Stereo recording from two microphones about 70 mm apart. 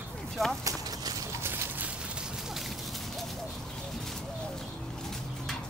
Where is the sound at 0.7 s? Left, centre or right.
Right.